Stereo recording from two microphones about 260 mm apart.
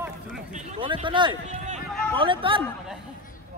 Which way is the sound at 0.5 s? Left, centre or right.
Right.